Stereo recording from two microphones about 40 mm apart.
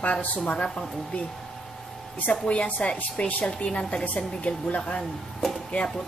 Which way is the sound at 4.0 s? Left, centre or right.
Left.